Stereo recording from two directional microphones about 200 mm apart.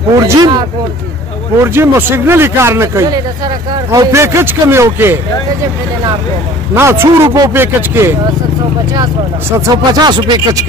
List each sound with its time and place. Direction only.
0.2 s a man's voice: 20° right (ahead or behind)
6.7 s a man's voice: 10° right (ahead or behind)